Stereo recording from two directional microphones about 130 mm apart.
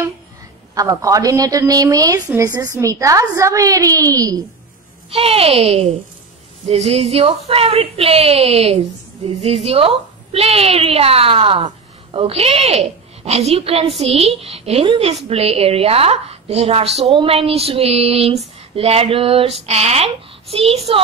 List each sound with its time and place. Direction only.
0.7 s a woman's voice: 25° right (ahead or behind)
5.1 s a woman's voice: 50° right (ahead or behind)